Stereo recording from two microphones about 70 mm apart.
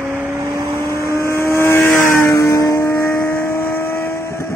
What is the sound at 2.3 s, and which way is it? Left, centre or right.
Vehicle, left.